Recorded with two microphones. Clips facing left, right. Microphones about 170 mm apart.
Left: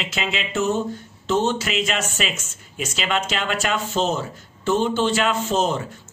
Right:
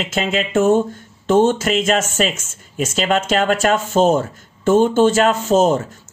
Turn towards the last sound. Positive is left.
turn(degrees=-45)  # may be behind; listen again after turning